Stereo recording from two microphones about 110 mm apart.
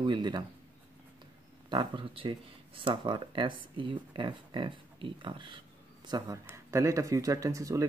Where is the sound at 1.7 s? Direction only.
45° right (ahead or behind).